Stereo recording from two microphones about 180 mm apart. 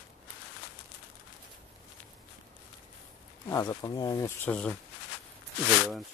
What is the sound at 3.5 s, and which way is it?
Speech, 20° left (ahead or behind).